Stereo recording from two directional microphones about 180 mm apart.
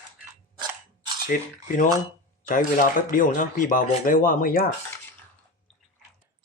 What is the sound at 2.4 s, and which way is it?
Speech, 50° left (ahead or behind).